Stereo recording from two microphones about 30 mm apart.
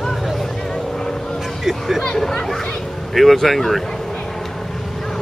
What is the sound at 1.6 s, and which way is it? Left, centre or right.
Speech, centre.